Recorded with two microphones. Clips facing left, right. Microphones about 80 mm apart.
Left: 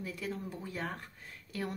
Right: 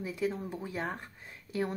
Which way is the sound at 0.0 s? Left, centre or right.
Centre.